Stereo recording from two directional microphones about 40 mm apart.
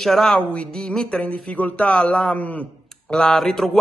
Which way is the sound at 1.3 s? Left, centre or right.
Left.